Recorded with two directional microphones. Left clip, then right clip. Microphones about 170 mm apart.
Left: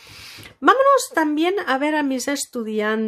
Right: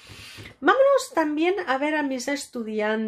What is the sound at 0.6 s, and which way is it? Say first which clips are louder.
A woman's voice: left 4 dB; 40° left (ahead or behind).